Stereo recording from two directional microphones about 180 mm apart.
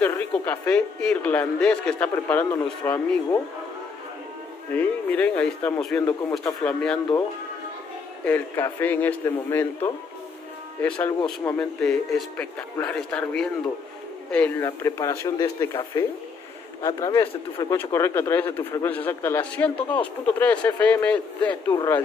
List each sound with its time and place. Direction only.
0.5 s speech: 5° left (ahead or behind)
4.7 s speech: 10° left (ahead or behind)
8.3 s speech: 10° left (ahead or behind)